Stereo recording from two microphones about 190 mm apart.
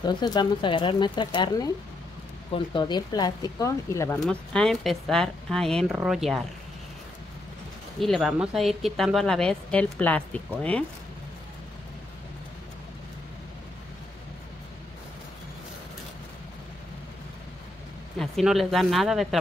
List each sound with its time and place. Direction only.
0.0 s speech: 20° left (ahead or behind)
4.2 s speech: 5° left (ahead or behind)
8.0 s speech: centre (ahead or behind)
18.2 s speech: centre (ahead or behind)